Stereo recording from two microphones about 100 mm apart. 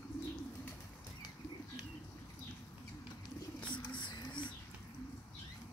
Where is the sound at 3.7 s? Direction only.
50° left (ahead or behind).